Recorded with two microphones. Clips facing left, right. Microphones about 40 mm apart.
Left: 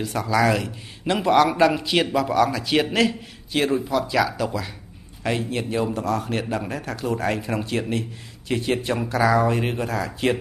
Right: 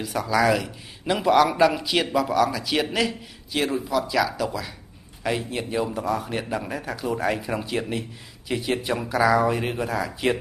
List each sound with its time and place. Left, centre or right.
0.1 s a man's voice: centre
5.9 s a man's voice: centre
6.3 s speech: centre
6.7 s a man's voice: right
7.5 s a man's voice: centre
9.8 s a man's voice: centre